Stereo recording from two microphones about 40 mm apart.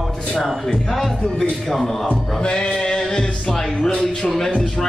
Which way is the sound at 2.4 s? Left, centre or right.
Left.